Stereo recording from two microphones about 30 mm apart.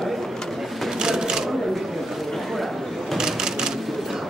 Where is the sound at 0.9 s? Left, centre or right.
Right.